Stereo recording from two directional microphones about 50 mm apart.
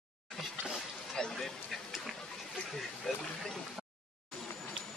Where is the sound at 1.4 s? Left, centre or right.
Centre.